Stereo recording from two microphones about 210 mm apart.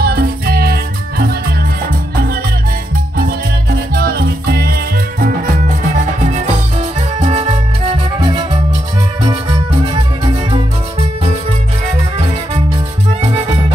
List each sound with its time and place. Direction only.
0.0 s music: 45° right (ahead or behind)
3.9 s music: 45° right (ahead or behind)
7.2 s music: 30° right (ahead or behind)
9.9 s music: 25° right (ahead or behind)